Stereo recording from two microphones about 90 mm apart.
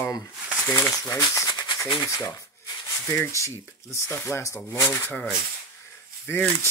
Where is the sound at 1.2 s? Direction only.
40° left (ahead or behind).